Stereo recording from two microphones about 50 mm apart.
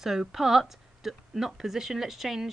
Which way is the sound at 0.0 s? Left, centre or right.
Centre.